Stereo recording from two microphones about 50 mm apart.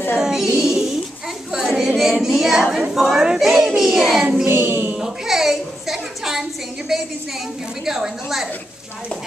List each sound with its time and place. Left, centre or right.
0.2 s child singing: centre
0.6 s a sound: centre
1.5 s singing: centre
2.2 s a woman's voice: centre
4.5 s a sound: right
4.9 s music: centre
6.9 s a woman's voice: centre